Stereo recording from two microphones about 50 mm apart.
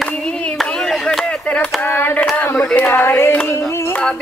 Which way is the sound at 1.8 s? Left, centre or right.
Left.